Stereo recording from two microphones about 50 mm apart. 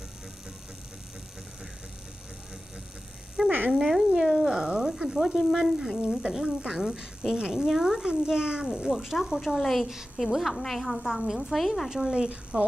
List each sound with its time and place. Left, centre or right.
3.4 s cat: centre
5.5 s speech: centre
6.0 s a woman's voice: centre
11.9 s speech: centre